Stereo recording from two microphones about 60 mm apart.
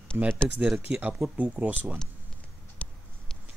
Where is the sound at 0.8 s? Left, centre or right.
Right.